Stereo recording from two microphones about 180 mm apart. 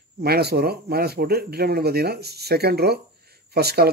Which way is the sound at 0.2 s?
60° right (ahead or behind).